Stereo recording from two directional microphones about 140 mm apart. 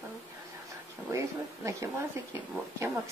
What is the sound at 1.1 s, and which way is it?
Speech, 20° right (ahead or behind).